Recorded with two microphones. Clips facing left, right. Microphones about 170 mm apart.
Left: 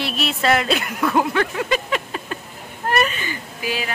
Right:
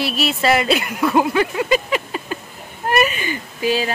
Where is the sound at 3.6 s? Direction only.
30° right (ahead or behind).